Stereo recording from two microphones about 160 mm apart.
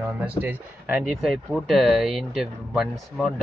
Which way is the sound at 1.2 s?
Centre (ahead or behind).